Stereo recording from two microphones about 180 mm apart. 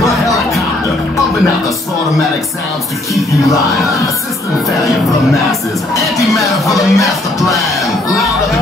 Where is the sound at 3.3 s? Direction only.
15° left (ahead or behind).